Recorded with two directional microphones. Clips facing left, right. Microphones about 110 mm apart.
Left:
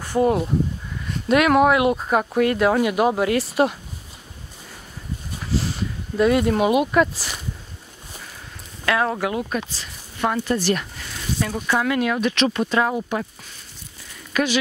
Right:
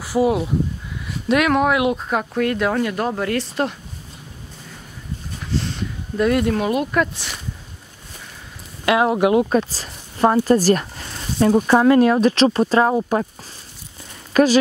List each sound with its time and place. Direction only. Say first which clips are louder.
0.0 s speech: right 1 dB; 5° right (ahead or behind)
5.4 s speech: even; 5° left (ahead or behind)
8.8 s speech: right 5 dB; 20° right (ahead or behind)
9.5 s speech: right 8 dB; 40° right (ahead or behind)
14.3 s speech: right 7 dB; 40° right (ahead or behind)